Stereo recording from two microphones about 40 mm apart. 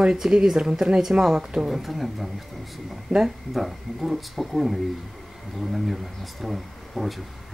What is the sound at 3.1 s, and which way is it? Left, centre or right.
Speech, centre.